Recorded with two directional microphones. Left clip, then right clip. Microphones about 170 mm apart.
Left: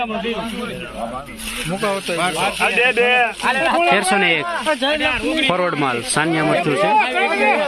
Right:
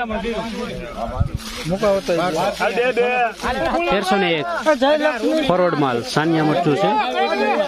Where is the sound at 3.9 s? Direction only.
20° right (ahead or behind).